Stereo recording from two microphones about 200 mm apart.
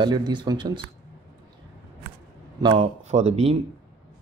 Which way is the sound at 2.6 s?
25° right (ahead or behind).